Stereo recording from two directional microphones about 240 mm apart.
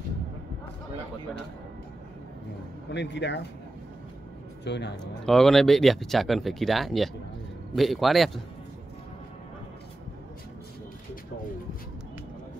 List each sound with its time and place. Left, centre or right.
2.9 s speech: left
4.6 s speech: left
5.0 s speech: centre